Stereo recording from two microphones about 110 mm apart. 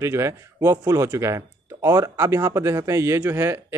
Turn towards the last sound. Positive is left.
turn(degrees=-25)  # may be behind; listen again after turning